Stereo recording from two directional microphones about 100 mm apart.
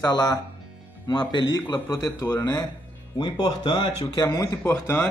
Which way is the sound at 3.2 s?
50° left (ahead or behind).